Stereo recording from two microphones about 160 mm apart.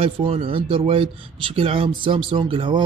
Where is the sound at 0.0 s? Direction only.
35° right (ahead or behind).